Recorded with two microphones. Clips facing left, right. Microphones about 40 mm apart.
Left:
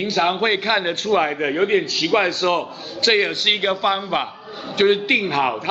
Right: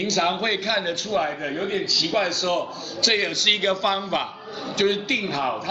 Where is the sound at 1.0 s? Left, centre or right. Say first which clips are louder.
Left 6 dB; left.